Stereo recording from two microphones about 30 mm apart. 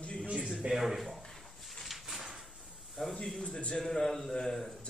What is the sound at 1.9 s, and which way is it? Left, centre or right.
Sliding door, centre.